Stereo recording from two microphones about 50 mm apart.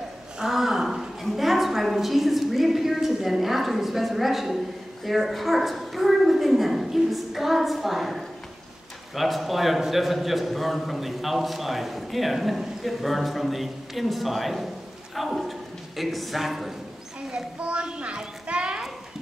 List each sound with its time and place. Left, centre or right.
0.4 s a sound: centre
5.0 s a woman's voice: centre
17.3 s children playing: right